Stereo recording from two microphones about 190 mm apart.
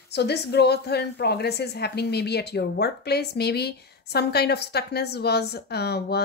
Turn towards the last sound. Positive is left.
turn(degrees=60)  # may be behind; listen again after turning